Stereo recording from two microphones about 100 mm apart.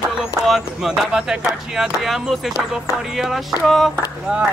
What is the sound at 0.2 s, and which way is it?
Speech, 5° right (ahead or behind).